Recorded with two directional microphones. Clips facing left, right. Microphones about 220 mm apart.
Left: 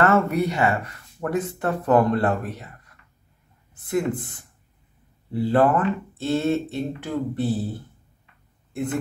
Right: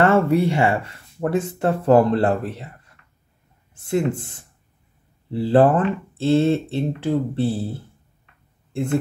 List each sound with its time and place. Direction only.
0.0 s speech: 30° right (ahead or behind)